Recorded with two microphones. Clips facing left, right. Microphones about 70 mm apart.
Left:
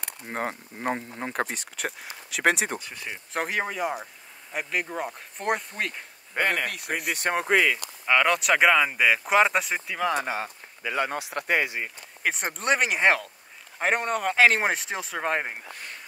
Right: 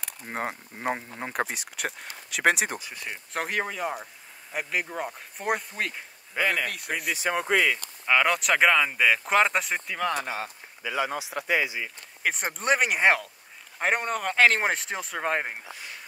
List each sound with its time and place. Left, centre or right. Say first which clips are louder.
0.0 s speech: left 1 dB; centre
6.3 s speech: left 1 dB; left
7.8 s speech: left 1 dB; centre
10.2 s speech: left 2 dB; left
10.8 s speech: left 1 dB; left
12.2 s speech: even; centre
15.6 s a sound: left 1 dB; left